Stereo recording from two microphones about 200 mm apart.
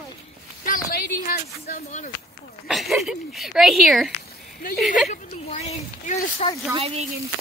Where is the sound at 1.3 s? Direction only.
40° left (ahead or behind).